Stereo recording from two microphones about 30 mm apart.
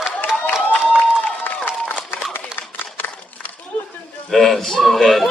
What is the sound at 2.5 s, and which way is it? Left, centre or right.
Run, left.